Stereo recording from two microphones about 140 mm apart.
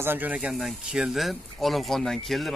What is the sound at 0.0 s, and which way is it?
Speech, 15° right (ahead or behind).